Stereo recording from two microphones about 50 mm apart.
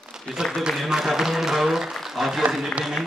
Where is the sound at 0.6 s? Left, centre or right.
Centre.